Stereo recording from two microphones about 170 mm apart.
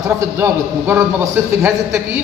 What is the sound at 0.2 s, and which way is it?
A man's voice, 15° right (ahead or behind).